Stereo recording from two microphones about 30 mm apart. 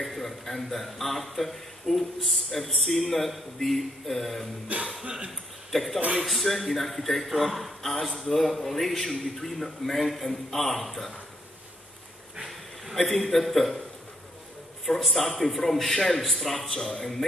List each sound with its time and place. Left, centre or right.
0.0 s a man's voice: centre
4.7 s speech: right
5.7 s a man's voice: centre
13.1 s a man's voice: centre
14.9 s a man's voice: centre
16.5 s a man's voice: centre